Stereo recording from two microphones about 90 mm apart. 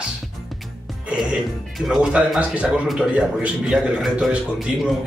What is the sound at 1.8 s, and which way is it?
Speech, centre (ahead or behind).